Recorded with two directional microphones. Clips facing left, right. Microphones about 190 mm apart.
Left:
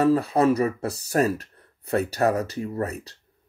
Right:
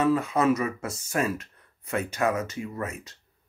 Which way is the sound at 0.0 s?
35° left (ahead or behind).